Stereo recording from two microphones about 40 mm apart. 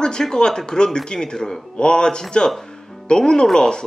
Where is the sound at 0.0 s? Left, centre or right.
Centre.